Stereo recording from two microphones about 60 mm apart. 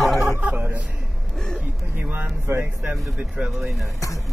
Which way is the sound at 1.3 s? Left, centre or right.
Centre.